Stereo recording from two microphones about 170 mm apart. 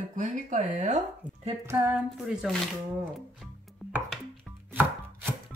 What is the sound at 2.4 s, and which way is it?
Speech, centre (ahead or behind).